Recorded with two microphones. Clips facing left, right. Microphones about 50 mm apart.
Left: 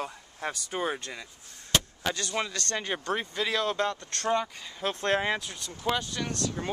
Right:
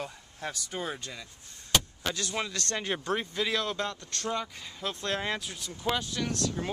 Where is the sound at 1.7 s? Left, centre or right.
Centre.